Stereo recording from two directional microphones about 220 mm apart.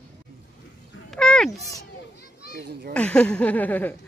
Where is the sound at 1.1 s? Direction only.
5° left (ahead or behind).